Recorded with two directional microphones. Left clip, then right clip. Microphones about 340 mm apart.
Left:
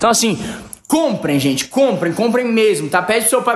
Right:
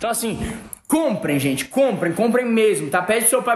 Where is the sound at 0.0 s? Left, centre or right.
Centre.